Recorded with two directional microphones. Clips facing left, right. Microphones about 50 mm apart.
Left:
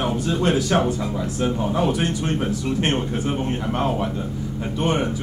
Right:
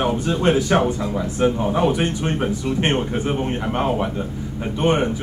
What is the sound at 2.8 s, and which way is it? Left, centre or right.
Speech, right.